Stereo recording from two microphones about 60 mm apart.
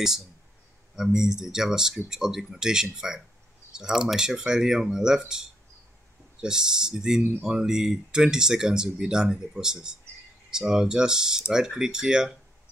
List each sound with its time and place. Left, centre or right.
0.9 s speech: centre
6.4 s speech: centre